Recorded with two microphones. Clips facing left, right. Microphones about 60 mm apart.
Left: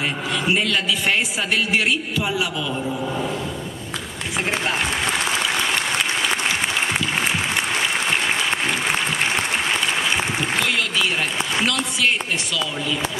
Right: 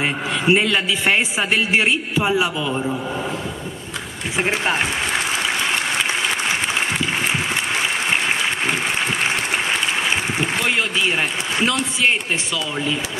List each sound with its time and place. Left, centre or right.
0.0 s a man's voice: right
11.6 s a man's voice: right